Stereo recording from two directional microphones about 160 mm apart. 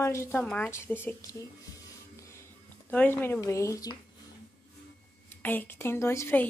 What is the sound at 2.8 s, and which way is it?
Speech, 10° left (ahead or behind).